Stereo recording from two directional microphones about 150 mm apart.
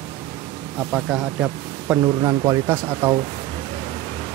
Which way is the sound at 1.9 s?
5° right (ahead or behind).